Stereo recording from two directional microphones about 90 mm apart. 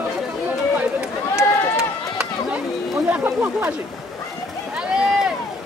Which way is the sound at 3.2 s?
25° right (ahead or behind).